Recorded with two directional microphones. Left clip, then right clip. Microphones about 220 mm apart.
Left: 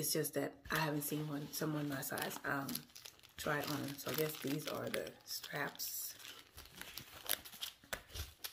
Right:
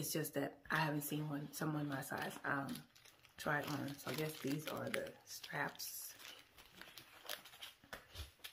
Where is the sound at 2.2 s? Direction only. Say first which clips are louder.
Left 1 dB; 5° right (ahead or behind).